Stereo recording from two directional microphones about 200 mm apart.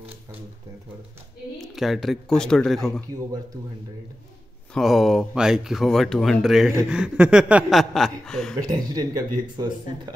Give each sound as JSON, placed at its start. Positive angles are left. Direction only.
{"t": 1.6, "sound": "speech", "side_deg": 0}
{"t": 4.7, "sound": "speech", "side_deg": 0}
{"t": 8.6, "sound": "speech", "side_deg": -20}